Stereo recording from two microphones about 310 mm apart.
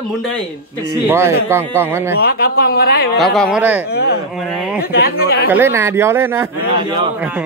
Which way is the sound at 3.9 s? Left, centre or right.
Left.